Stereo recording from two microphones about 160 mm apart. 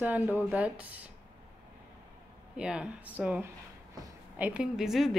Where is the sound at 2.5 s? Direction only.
5° right (ahead or behind).